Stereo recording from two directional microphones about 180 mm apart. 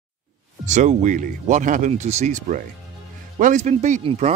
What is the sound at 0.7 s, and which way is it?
Speech, 45° right (ahead or behind).